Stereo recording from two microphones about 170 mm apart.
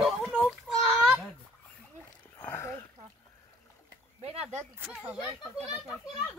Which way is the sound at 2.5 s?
15° left (ahead or behind).